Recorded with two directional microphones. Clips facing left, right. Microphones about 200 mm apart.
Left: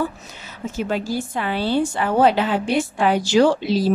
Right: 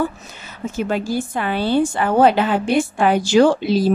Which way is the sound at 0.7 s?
50° right (ahead or behind).